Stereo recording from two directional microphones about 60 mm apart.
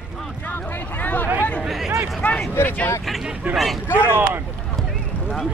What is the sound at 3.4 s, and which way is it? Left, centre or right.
Speech, right.